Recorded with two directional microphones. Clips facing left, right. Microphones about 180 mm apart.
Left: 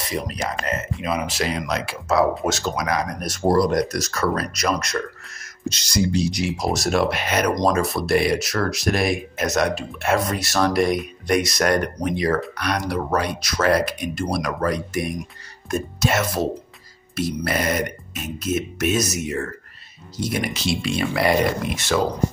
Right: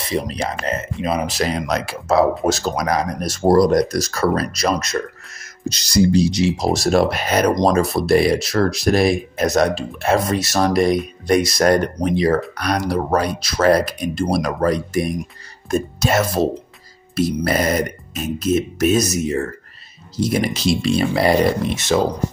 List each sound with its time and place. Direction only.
1.0 s speech: 35° right (ahead or behind)
11.2 s speech: 30° right (ahead or behind)